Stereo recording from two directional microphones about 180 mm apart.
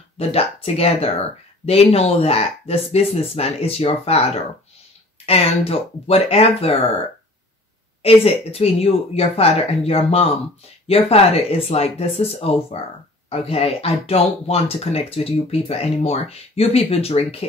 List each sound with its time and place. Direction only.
0.3 s speech: 35° left (ahead or behind)
5.7 s speech: 35° left (ahead or behind)
8.0 s speech: 35° left (ahead or behind)